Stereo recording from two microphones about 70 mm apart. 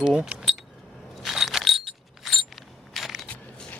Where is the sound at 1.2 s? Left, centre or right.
Centre.